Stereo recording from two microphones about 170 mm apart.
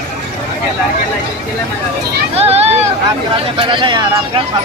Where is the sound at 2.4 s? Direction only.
35° right (ahead or behind).